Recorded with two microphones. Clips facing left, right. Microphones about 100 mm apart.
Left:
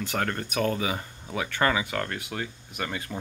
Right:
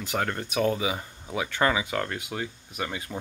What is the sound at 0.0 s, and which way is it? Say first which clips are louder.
Speech: even; 15° right (ahead or behind).